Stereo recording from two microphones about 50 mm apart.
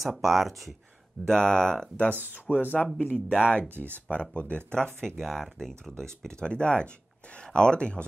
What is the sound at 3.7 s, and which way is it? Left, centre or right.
Speech, right.